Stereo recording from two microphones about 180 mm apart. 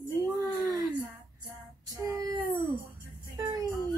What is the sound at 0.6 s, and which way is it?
Child singing, 20° right (ahead or behind).